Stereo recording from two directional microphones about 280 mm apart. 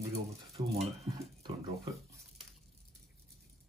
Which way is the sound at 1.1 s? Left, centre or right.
Centre.